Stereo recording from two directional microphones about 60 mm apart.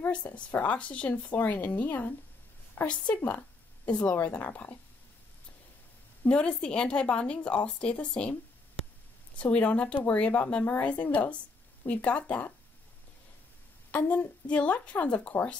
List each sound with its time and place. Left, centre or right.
0.0 s a woman's voice: left
3.8 s speech: left
6.2 s a woman's voice: centre
9.4 s speech: centre
13.9 s speech: left